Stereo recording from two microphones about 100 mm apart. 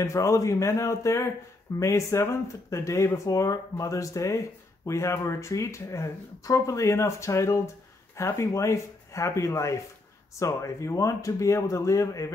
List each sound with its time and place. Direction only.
0.0 s speech: 30° left (ahead or behind)